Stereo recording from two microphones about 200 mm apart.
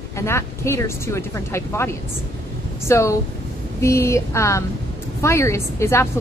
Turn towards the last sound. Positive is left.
turn(degrees=15)  # may be behind; listen again after turning